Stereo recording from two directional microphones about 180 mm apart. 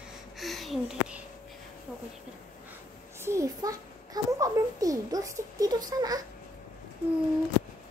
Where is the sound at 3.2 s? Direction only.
15° right (ahead or behind).